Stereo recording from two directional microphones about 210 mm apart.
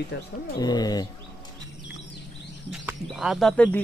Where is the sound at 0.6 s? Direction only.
20° left (ahead or behind).